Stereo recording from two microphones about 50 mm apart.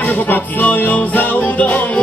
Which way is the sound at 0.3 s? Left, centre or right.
Left.